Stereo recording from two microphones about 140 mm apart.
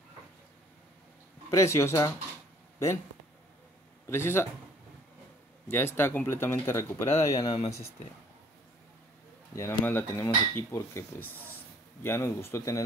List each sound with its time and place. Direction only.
1.5 s speech: 20° left (ahead or behind)
4.1 s speech: 15° left (ahead or behind)
5.7 s speech: 15° left (ahead or behind)
9.6 s speech: 15° left (ahead or behind)